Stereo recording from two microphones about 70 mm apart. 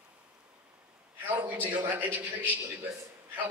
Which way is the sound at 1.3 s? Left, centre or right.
Right.